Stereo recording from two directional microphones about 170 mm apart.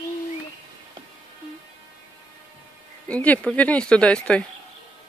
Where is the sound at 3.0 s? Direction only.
10° left (ahead or behind).